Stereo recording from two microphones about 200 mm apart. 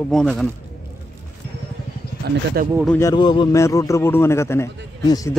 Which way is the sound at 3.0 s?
20° left (ahead or behind).